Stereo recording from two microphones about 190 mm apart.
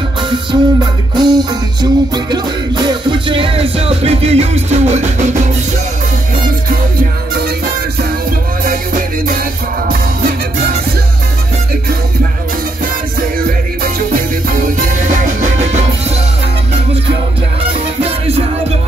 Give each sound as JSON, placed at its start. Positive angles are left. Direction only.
{"t": 0.5, "sound": "music", "side_deg": -25}
{"t": 14.8, "sound": "music", "side_deg": -45}